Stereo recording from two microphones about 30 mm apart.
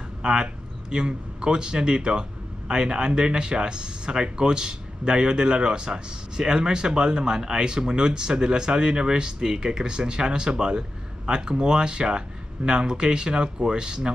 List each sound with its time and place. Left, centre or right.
0.2 s a man's voice: right